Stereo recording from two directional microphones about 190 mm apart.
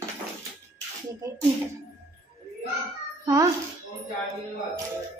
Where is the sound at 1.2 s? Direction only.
15° right (ahead or behind).